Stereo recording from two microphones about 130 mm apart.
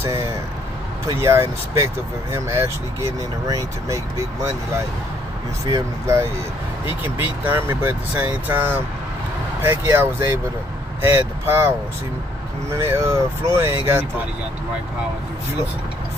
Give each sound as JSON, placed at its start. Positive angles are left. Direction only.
{"t": 0.0, "sound": "speech", "side_deg": -20}
{"t": 12.7, "sound": "speech", "side_deg": -20}